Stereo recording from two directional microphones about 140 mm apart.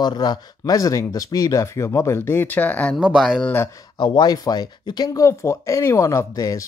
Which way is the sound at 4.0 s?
30° left (ahead or behind).